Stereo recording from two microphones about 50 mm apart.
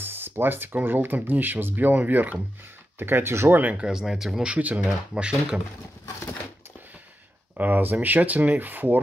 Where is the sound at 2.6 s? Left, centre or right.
Right.